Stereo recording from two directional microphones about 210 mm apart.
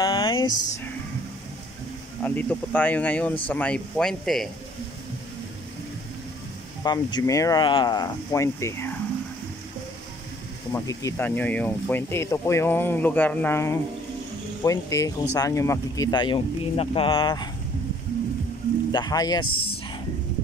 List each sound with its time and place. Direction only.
0.0 s a sound: 20° left (ahead or behind)
2.2 s speech: 10° left (ahead or behind)
6.8 s speech: 20° left (ahead or behind)
10.7 s speech: 15° left (ahead or behind)
18.9 s speech: 20° left (ahead or behind)